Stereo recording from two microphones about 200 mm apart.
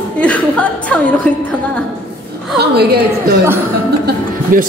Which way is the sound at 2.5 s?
55° right (ahead or behind).